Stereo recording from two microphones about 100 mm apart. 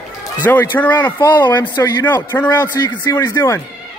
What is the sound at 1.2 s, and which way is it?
Speech, 50° left (ahead or behind).